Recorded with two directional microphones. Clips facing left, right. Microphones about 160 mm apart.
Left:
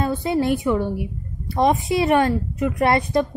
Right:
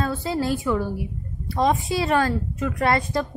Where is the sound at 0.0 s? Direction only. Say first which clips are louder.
Left 4 dB; 20° left (ahead or behind).